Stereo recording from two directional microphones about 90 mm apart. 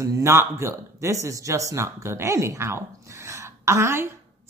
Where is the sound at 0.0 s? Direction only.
35° right (ahead or behind).